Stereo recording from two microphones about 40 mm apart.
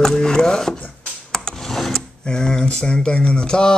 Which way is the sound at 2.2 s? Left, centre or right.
Left.